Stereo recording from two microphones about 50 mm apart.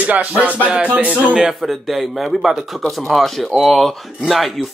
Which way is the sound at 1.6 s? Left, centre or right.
Centre.